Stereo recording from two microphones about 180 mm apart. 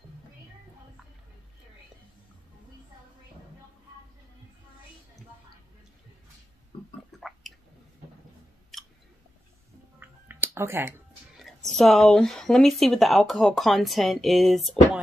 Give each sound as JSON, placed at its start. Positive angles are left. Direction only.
{"t": 7.2, "sound": "chewing", "side_deg": 0}
{"t": 9.9, "sound": "a sound", "side_deg": -10}
{"t": 11.7, "sound": "speech", "side_deg": 0}